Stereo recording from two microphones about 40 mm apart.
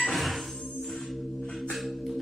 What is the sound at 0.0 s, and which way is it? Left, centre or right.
Music, centre.